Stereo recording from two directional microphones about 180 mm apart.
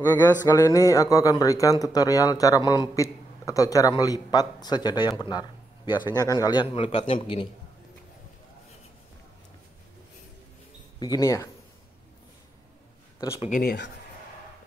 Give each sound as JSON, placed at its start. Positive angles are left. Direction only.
{"t": 0.0, "sound": "a man's voice", "side_deg": 10}
{"t": 11.0, "sound": "speech", "side_deg": 20}
{"t": 13.5, "sound": "speech", "side_deg": 60}